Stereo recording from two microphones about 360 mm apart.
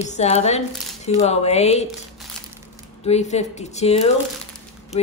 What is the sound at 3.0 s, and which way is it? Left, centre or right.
Speech, centre.